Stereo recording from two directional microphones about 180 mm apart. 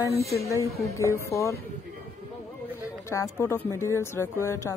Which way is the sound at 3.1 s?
15° left (ahead or behind).